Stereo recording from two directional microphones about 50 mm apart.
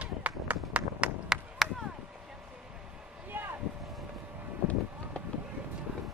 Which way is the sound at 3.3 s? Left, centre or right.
Right.